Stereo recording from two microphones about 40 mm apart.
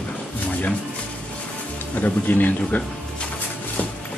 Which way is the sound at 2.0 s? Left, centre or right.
Left.